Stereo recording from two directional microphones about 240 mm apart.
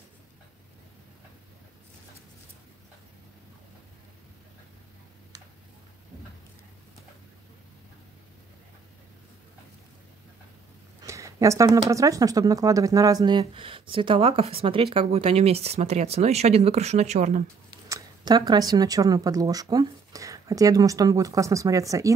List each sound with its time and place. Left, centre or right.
11.1 s speech: centre; by 17.5 s right
17.8 s speech: centre